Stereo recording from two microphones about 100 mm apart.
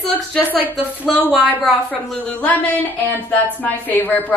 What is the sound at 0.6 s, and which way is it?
A woman's voice, 15° left (ahead or behind).